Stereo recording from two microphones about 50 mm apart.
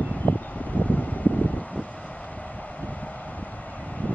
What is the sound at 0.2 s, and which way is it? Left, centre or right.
Vehicle, left.